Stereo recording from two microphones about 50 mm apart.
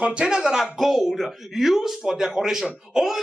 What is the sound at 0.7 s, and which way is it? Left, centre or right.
A man's voice, centre.